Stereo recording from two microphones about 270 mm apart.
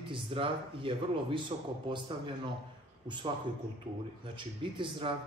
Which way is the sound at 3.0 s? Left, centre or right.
Centre.